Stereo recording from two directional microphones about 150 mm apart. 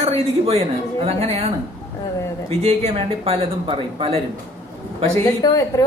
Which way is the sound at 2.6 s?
45° right (ahead or behind).